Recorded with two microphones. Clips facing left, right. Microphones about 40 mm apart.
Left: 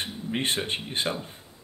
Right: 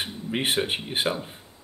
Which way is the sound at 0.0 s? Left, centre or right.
Centre.